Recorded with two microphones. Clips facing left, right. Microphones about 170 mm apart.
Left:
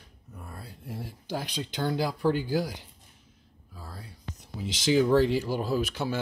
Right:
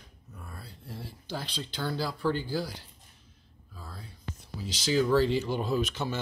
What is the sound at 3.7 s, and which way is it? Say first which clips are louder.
Speech: left 1 dB; 10° left (ahead or behind).